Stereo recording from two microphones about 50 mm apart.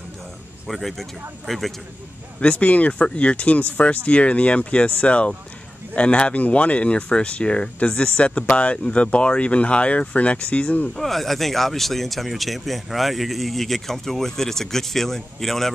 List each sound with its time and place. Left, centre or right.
0.7 s speech: centre
2.4 s speech: left
11.0 s speech: centre